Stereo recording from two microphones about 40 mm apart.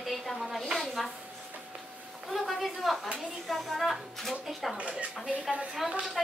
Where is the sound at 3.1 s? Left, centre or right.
Centre.